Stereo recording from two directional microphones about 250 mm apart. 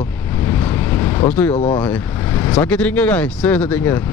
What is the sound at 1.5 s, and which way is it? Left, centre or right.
Speech, centre.